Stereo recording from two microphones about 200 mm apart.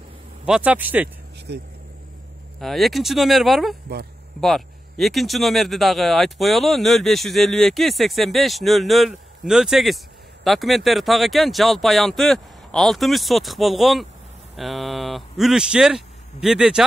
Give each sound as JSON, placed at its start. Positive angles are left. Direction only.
{"t": 0.5, "sound": "speech", "side_deg": -5}
{"t": 1.5, "sound": "speech", "side_deg": -55}
{"t": 2.6, "sound": "speech", "side_deg": 0}